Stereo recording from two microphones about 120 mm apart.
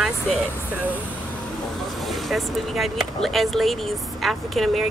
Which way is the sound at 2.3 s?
Centre (ahead or behind).